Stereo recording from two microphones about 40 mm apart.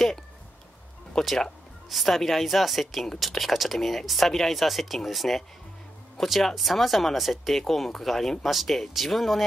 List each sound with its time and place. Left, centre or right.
1.1 s speech: centre